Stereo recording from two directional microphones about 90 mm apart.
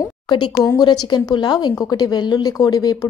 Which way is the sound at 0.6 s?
45° left (ahead or behind).